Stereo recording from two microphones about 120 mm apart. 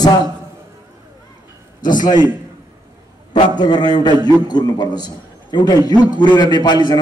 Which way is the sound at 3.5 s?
35° left (ahead or behind).